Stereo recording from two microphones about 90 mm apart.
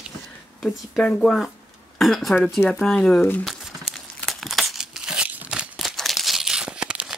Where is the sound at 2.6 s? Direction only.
25° left (ahead or behind).